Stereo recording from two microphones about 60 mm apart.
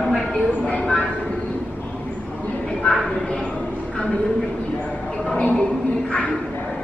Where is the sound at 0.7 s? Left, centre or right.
Left.